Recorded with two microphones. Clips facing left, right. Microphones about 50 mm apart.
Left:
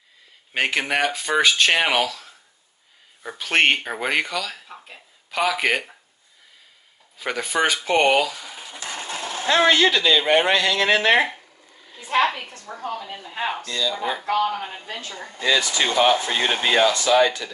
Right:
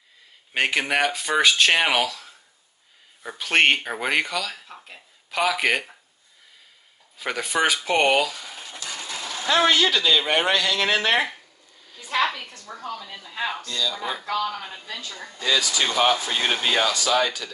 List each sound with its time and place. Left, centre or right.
0.5 s speech: centre
7.2 s speech: centre
8.7 s speech: left
12.1 s a woman's voice: left
14.2 s speech: left